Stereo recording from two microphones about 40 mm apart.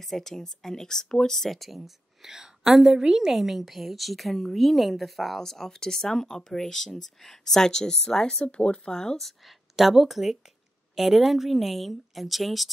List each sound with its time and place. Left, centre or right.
0.0 s speech: centre
1.5 s a woman's voice: centre
8.5 s speech: left
8.9 s speech: centre
9.8 s a woman's voice: centre